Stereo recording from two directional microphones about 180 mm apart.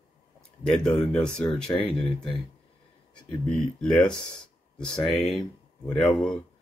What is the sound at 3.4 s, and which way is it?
Speech, 5° left (ahead or behind).